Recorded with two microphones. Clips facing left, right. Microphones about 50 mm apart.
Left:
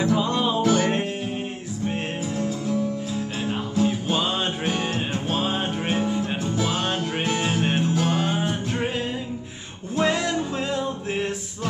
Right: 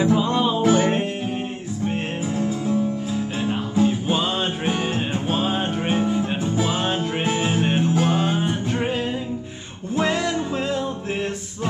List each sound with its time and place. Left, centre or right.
0.1 s music: centre
0.6 s music: right
2.3 s music: centre
3.8 s music: centre
8.5 s music: centre